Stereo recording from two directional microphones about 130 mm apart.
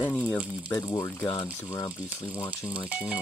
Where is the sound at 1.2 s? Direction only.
25° left (ahead or behind).